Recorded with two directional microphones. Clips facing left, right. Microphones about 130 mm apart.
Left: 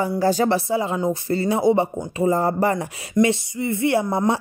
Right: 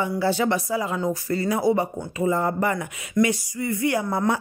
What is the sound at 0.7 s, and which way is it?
Speech, 25° left (ahead or behind).